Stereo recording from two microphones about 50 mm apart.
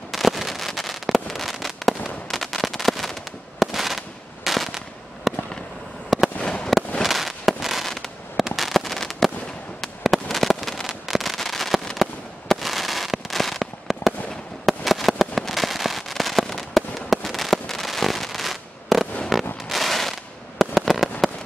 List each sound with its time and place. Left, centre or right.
0.1 s fireworks: centre
6.4 s fireworks: centre
7.0 s fireworks: centre